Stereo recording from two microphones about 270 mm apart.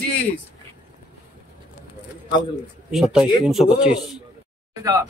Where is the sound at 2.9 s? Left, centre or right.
Centre.